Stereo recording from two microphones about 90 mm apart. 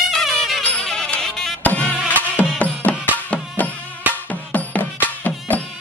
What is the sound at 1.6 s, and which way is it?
Music, 15° left (ahead or behind).